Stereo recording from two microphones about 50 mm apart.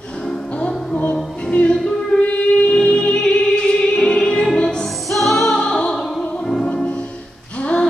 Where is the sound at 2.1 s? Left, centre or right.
Left.